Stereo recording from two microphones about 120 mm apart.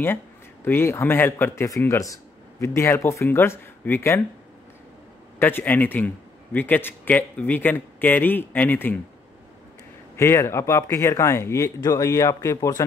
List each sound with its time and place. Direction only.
0.7 s speech: 20° left (ahead or behind)
5.4 s a man's voice: 15° left (ahead or behind)
10.1 s speech: 20° left (ahead or behind)